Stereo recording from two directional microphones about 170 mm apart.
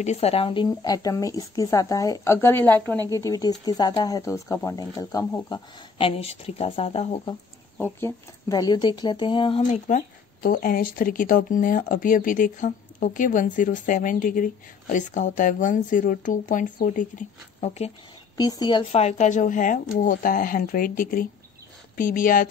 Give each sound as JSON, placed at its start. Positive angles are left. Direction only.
{"t": 0.0, "sound": "speech", "side_deg": 40}
{"t": 7.7, "sound": "speech", "side_deg": 10}
{"t": 9.6, "sound": "speech", "side_deg": 45}
{"t": 18.4, "sound": "speech", "side_deg": 25}
{"t": 18.9, "sound": "speech", "side_deg": 40}